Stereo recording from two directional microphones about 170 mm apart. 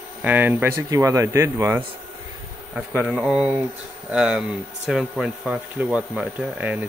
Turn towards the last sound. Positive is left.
turn(degrees=-10)  # may be behind; listen again after turning